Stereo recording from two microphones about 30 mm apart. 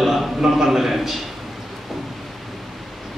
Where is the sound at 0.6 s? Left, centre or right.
Centre.